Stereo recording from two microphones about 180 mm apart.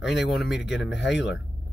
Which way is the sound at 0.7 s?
75° left (ahead or behind).